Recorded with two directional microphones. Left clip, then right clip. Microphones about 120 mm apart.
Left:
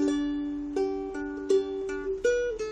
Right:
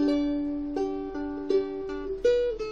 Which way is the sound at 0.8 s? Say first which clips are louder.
Left 4 dB; 20° left (ahead or behind).